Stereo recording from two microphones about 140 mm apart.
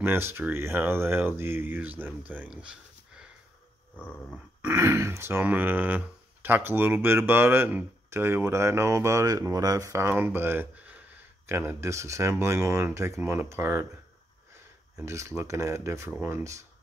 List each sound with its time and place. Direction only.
0.0 s speech: 15° right (ahead or behind)
3.9 s a sound: 10° left (ahead or behind)
4.6 s speech: 20° right (ahead or behind)
15.0 s speech: 20° right (ahead or behind)